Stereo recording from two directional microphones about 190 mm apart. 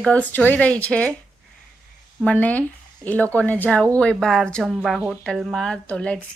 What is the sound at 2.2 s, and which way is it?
Speech, 5° left (ahead or behind).